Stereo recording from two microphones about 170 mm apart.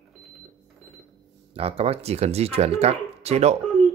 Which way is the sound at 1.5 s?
35° right (ahead or behind).